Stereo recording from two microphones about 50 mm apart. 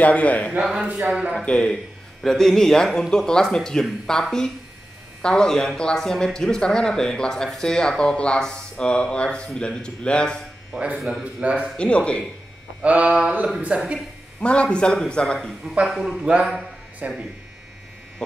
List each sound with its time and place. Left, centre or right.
0.0 s a man's voice: left
2.2 s a man's voice: centre
11.0 s speech: centre
11.4 s speech: right
11.7 s a man's voice: left
12.8 s speech: right
14.4 s a man's voice: left
15.9 s speech: centre
16.3 s speech: right